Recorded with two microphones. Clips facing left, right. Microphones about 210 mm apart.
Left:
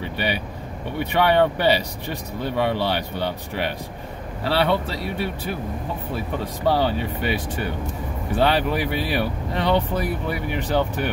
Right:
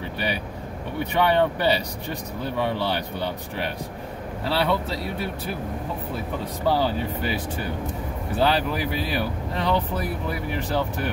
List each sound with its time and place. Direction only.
0.9 s speech: 70° left (ahead or behind)
6.4 s speech: 70° left (ahead or behind)